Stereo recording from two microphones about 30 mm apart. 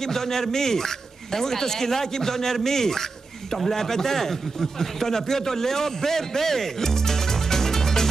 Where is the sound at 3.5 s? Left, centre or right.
Centre.